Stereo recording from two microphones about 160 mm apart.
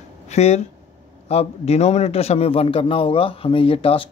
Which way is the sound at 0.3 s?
45° left (ahead or behind).